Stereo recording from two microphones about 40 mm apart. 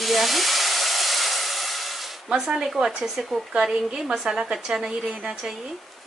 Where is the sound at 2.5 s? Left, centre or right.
Centre.